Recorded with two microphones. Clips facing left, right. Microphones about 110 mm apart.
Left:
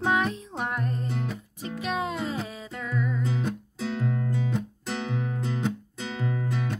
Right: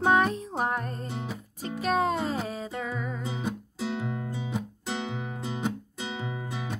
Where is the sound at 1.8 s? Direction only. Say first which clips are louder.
Right 4 dB; 40° right (ahead or behind).